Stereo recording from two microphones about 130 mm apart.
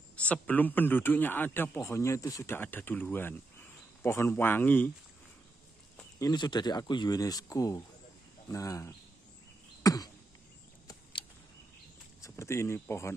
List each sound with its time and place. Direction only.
0.1 s a man's voice: 10° left (ahead or behind)
6.1 s speech: 30° left (ahead or behind)
9.8 s a sound: 30° left (ahead or behind)
12.2 s speech: 20° left (ahead or behind)